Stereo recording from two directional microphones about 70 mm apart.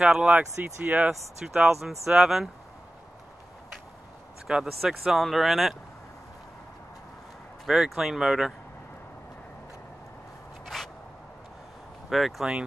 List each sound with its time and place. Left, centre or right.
0.0 s speech: centre
0.3 s speech: centre
1.4 s speech: centre
4.5 s speech: centre
7.6 s speech: centre
10.7 s a sound: centre
12.1 s speech: centre